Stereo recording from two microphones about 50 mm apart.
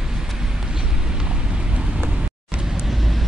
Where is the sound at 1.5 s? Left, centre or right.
Centre.